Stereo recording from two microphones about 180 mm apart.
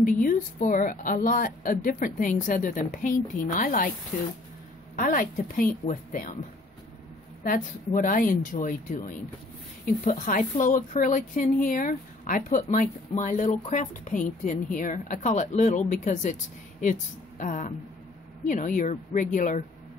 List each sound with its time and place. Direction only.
0.0 s a woman's voice: 50° left (ahead or behind)
4.9 s a woman's voice: 50° left (ahead or behind)
7.4 s a woman's voice: 50° left (ahead or behind)